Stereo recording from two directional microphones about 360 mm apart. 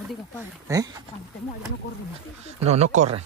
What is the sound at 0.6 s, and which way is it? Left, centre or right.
Speech, centre.